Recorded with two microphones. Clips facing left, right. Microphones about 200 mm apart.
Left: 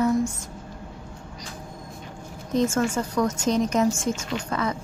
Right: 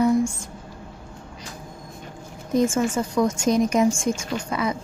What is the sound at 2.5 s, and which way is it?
A woman's voice, 10° right (ahead or behind).